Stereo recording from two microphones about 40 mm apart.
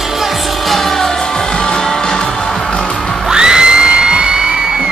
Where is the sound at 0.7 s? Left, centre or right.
Centre.